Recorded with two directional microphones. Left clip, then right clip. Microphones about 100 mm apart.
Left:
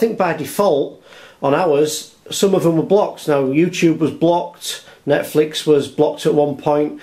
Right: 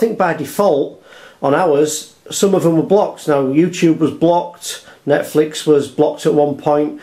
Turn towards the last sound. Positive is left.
turn(degrees=15)  # may be behind; listen again after turning